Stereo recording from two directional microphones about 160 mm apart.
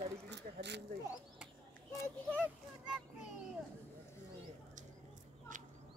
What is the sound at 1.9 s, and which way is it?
Speech, 5° right (ahead or behind).